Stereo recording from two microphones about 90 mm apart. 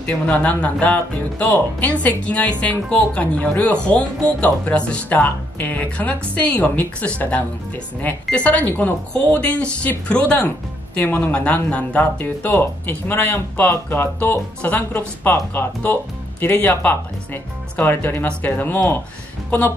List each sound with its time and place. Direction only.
0.0 s speech: 15° left (ahead or behind)